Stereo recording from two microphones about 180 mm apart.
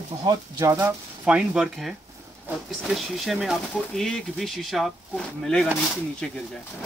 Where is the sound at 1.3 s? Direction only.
5° right (ahead or behind).